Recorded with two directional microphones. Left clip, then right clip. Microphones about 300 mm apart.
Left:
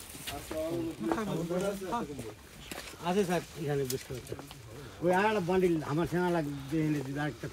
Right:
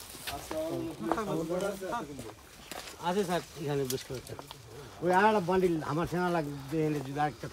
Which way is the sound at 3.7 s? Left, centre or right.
Centre.